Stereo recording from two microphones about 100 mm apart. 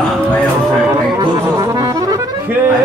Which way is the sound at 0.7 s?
20° right (ahead or behind).